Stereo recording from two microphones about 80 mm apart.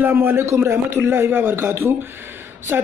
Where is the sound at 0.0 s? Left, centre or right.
Right.